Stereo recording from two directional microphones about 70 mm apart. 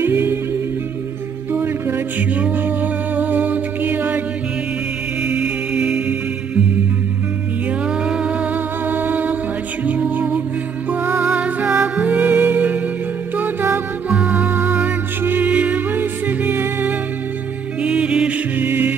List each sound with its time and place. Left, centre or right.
0.0 s humming: right
1.5 s music: right
5.2 s music: centre
8.0 s humming: centre
8.8 s music: right
17.8 s music: centre
18.6 s music: right